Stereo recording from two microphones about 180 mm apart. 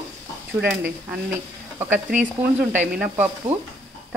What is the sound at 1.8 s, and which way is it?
Sizzle, 10° right (ahead or behind).